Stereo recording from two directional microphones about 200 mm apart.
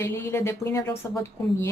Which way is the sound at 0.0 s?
10° left (ahead or behind).